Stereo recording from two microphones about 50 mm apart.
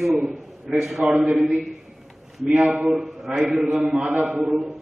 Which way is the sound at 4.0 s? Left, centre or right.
Right.